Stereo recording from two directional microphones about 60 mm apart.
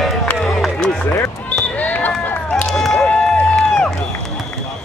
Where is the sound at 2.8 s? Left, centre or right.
Centre.